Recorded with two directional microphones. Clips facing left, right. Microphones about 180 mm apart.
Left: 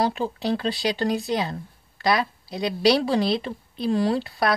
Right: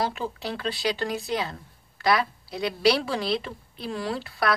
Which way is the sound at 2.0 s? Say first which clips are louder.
Left 1 dB; 20° left (ahead or behind).